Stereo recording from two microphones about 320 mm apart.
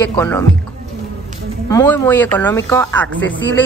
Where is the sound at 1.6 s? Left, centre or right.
Centre.